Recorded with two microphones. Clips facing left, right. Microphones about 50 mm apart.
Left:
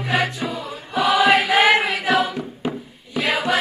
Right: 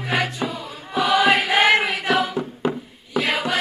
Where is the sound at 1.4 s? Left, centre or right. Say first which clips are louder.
Left 1 dB; centre.